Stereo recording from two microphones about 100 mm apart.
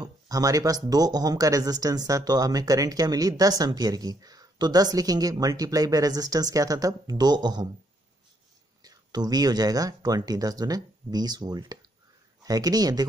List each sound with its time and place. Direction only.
0.0 s speech: 35° right (ahead or behind)
8.8 s speech: 40° right (ahead or behind)